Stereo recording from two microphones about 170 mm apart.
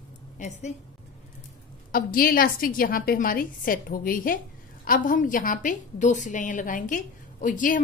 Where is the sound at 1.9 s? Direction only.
60° left (ahead or behind).